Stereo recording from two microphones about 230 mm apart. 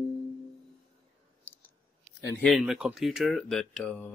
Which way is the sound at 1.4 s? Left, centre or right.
Centre.